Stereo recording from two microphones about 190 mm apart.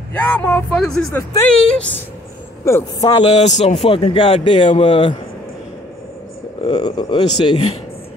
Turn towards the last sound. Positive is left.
turn(degrees=30)  # may be behind; listen again after turning